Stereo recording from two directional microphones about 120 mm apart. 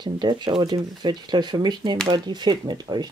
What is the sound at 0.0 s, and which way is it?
Speech, 40° right (ahead or behind).